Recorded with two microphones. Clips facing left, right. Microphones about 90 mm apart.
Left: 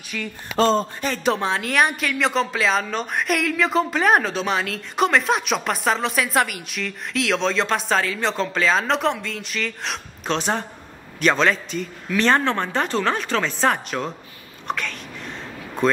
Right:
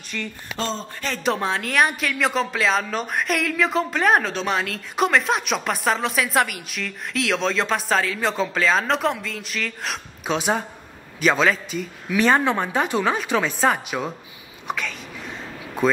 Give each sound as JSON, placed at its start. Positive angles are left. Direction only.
{"t": 0.1, "sound": "speech", "side_deg": 0}
{"t": 0.6, "sound": "speech", "side_deg": 50}
{"t": 1.0, "sound": "a man's voice", "side_deg": 0}
{"t": 14.7, "sound": "a sound", "side_deg": -5}